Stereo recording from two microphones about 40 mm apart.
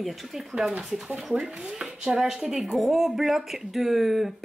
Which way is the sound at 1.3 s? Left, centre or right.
Centre.